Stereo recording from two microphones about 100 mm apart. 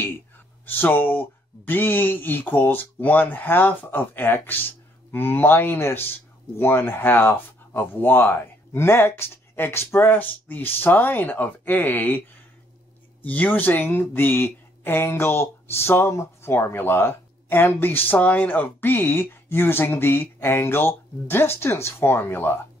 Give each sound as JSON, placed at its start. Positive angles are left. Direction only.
{"t": 0.7, "sound": "speech", "side_deg": 20}
{"t": 13.2, "sound": "speech", "side_deg": 15}